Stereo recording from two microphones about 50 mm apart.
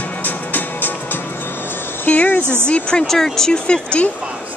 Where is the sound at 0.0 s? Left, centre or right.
Left.